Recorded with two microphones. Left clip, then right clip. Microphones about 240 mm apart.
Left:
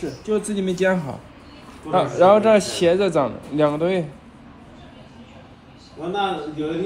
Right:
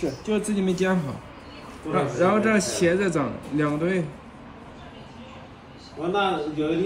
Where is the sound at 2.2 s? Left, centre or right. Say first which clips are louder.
Left 9 dB; right.